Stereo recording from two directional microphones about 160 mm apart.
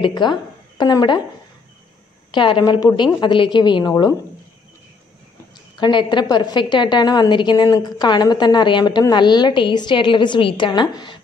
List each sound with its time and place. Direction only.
0.0 s a woman's voice: 30° left (ahead or behind)
2.3 s a woman's voice: 30° left (ahead or behind)
5.8 s a woman's voice: 30° left (ahead or behind)